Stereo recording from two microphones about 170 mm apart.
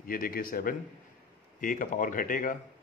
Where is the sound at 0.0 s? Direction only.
55° left (ahead or behind).